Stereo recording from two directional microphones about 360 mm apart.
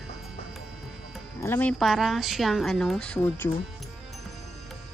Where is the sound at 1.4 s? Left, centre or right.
Centre.